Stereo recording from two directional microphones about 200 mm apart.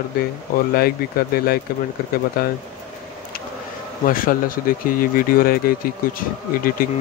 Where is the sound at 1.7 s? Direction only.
45° left (ahead or behind).